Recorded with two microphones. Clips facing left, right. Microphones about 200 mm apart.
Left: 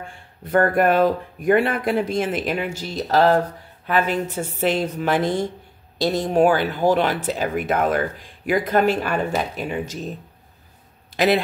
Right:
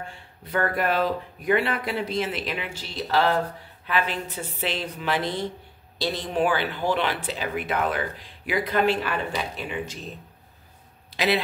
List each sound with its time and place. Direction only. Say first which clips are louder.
0.5 s speech: left 7 dB; 50° left (ahead or behind)
11.1 s speech: left 5 dB; 50° left (ahead or behind)